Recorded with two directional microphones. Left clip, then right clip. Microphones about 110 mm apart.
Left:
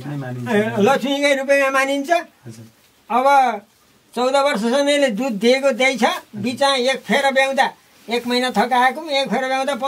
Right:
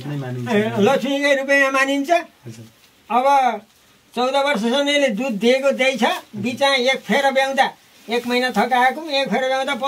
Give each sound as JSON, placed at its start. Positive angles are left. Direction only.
{"t": 0.1, "sound": "a man's voice", "side_deg": 15}
{"t": 0.6, "sound": "a man's voice", "side_deg": 0}
{"t": 1.0, "sound": "speech", "side_deg": 30}
{"t": 1.3, "sound": "a man's voice", "side_deg": 0}
{"t": 8.5, "sound": "speech", "side_deg": 30}
{"t": 9.0, "sound": "a man's voice", "side_deg": 0}